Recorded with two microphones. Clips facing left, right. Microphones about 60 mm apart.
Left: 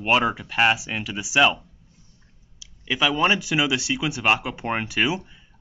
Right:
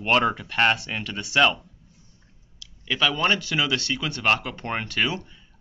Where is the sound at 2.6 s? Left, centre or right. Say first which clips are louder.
Left 1 dB; centre.